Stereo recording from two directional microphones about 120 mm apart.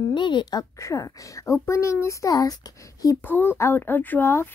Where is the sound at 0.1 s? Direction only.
40° left (ahead or behind).